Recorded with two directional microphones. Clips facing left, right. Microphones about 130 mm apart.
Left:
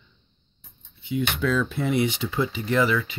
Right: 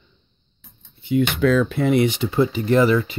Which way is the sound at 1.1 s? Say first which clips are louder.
Right 7 dB; 65° right (ahead or behind).